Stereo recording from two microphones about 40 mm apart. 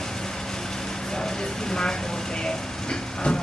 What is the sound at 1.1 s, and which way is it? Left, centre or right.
Speech, centre.